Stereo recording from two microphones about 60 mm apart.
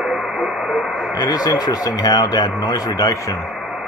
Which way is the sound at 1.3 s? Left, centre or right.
Left.